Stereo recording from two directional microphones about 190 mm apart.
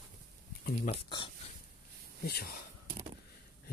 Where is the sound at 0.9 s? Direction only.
25° left (ahead or behind).